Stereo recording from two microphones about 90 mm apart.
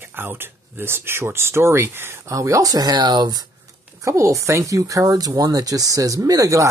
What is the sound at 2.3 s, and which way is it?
Speech, 35° right (ahead or behind).